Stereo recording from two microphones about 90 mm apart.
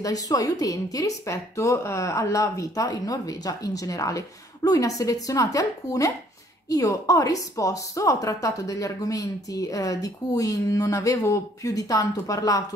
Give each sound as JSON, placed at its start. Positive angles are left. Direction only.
{"t": 0.0, "sound": "a woman's voice", "side_deg": 40}